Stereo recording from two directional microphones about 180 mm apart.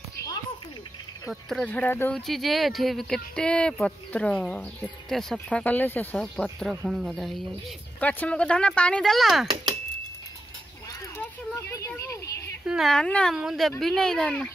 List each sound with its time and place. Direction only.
1.3 s speech: 5° left (ahead or behind)
11.1 s speech: 15° left (ahead or behind)
12.6 s speech: centre (ahead or behind)